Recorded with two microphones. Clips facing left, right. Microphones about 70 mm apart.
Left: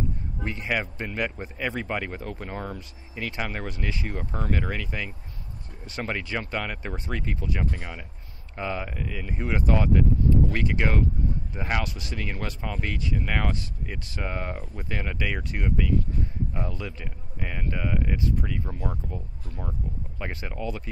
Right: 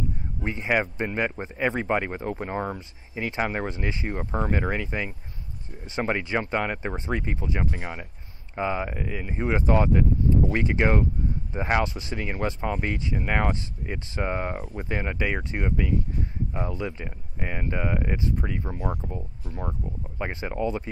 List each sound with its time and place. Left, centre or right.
0.4 s speech: right